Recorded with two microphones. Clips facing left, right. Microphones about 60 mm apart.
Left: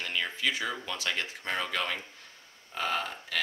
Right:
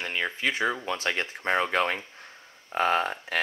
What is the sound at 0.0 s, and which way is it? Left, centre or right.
Speech, right.